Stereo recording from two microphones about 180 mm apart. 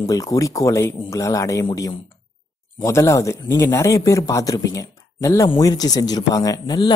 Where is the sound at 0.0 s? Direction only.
20° left (ahead or behind).